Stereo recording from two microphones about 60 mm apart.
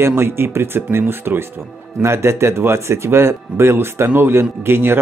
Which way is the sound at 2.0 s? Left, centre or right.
Right.